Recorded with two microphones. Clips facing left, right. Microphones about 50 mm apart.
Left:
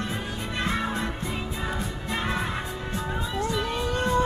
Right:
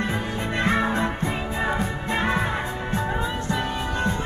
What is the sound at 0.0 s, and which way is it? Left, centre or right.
Music, right.